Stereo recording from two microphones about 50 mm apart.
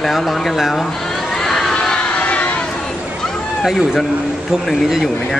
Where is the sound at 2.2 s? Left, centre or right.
Left.